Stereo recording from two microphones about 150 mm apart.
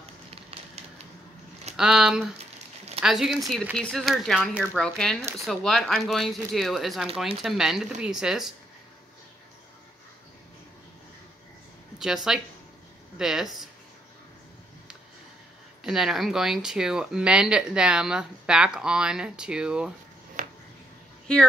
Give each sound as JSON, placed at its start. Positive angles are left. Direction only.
{"t": 1.8, "sound": "speech", "side_deg": -5}
{"t": 2.3, "sound": "crumpling", "side_deg": -45}
{"t": 3.0, "sound": "speech", "side_deg": -5}
{"t": 12.0, "sound": "speech", "side_deg": -5}
{"t": 15.8, "sound": "speech", "side_deg": 0}
{"t": 20.4, "sound": "a sound", "side_deg": -60}